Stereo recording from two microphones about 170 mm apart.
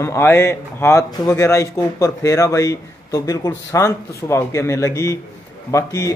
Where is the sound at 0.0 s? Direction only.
15° left (ahead or behind).